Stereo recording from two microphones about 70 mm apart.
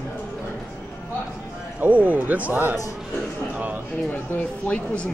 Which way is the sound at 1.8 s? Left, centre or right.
Right.